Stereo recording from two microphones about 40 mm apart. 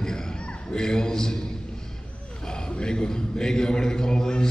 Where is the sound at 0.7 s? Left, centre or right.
Centre.